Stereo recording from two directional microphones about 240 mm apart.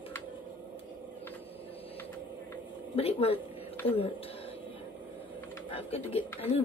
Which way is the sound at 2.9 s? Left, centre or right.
Left.